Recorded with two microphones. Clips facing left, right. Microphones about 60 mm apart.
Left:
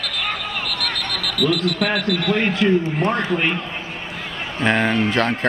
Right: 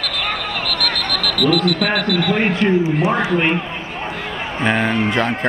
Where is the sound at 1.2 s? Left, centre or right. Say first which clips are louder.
Right 4 dB; centre.